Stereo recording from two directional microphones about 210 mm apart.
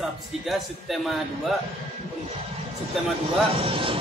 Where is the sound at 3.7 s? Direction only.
25° right (ahead or behind).